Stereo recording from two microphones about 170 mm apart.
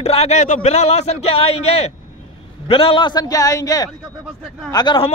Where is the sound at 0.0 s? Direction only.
40° left (ahead or behind).